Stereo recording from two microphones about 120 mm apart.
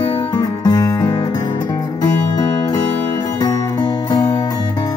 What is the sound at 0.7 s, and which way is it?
Music, 30° left (ahead or behind).